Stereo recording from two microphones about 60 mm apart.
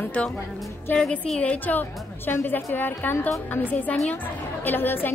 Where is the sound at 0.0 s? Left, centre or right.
Left.